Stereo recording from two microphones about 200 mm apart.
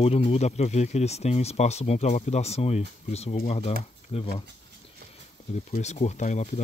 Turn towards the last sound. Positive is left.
turn(degrees=35)  # may be behind; listen again after turning